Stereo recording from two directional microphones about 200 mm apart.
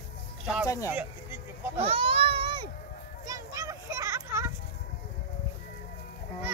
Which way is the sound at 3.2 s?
15° right (ahead or behind).